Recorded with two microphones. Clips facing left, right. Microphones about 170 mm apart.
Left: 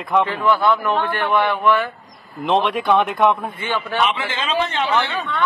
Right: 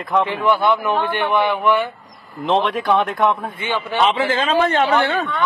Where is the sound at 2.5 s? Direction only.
Centre (ahead or behind).